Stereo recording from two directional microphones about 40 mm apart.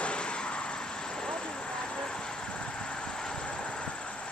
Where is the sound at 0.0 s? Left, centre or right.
Left.